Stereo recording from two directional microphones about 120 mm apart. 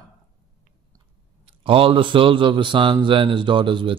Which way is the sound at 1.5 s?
50° right (ahead or behind).